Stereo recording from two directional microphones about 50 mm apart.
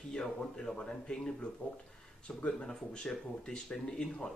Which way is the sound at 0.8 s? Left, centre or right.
Centre.